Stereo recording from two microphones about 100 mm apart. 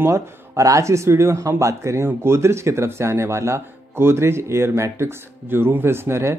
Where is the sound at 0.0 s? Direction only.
30° right (ahead or behind).